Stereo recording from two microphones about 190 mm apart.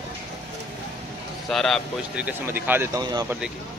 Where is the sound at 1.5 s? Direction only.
Centre (ahead or behind).